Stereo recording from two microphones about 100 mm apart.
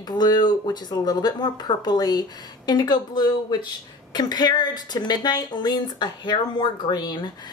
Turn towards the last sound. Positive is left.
turn(degrees=45)  # may be behind; listen again after turning